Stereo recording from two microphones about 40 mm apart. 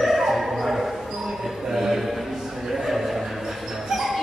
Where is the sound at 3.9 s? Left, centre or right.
Centre.